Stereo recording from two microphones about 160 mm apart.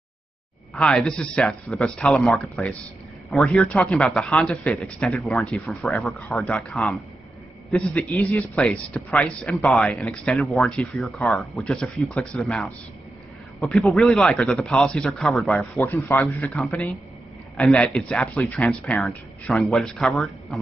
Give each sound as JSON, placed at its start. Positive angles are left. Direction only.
{"t": 0.7, "sound": "a man's voice", "side_deg": 5}
{"t": 15.8, "sound": "a man's voice", "side_deg": 15}